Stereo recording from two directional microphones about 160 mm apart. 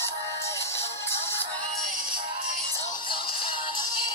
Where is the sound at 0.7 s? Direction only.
15° left (ahead or behind).